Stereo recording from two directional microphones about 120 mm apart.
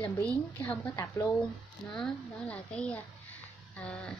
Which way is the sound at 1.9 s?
5° left (ahead or behind).